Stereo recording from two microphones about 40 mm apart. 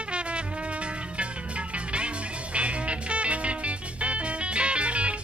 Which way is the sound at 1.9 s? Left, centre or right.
Right.